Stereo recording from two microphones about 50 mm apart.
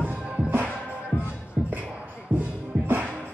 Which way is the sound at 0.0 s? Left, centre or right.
Right.